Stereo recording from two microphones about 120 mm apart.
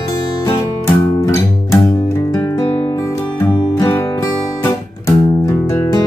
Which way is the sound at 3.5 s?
35° left (ahead or behind).